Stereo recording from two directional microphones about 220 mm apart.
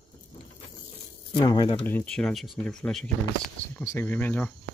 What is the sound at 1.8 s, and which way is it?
Speech, 5° left (ahead or behind).